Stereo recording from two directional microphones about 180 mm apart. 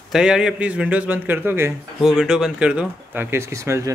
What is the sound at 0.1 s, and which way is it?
Speech, 5° right (ahead or behind).